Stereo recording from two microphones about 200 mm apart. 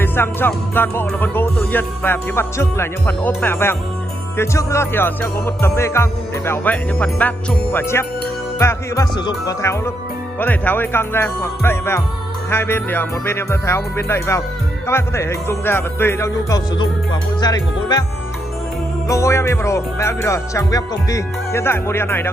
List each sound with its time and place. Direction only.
0.0 s music: 10° left (ahead or behind)
19.0 s music: 15° left (ahead or behind)